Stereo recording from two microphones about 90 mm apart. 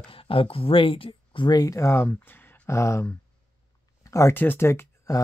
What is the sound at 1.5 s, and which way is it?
Speech, 35° left (ahead or behind).